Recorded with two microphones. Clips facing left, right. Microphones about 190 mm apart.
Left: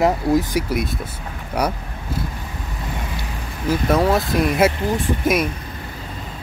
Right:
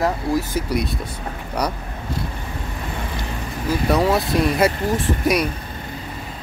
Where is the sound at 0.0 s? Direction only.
20° left (ahead or behind).